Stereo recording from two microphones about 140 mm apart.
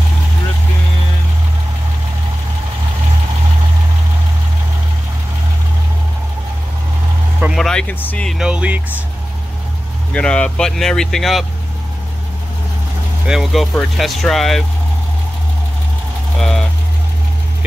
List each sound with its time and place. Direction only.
7.5 s vehicle: centre (ahead or behind)
8.0 s speech: 10° left (ahead or behind)
8.3 s speech: 5° right (ahead or behind)
10.1 s speech: 10° left (ahead or behind)
13.3 s speech: centre (ahead or behind)
16.3 s vehicle: 5° left (ahead or behind)